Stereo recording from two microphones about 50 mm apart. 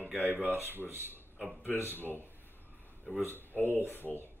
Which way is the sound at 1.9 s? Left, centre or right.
Left.